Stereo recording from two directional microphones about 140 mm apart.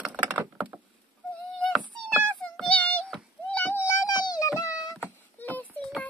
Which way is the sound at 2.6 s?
10° left (ahead or behind).